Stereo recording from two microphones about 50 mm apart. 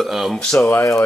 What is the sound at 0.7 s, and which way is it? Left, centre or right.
Speech, left.